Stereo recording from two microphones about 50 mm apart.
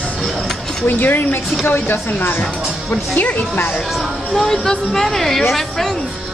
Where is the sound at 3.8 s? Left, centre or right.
Centre.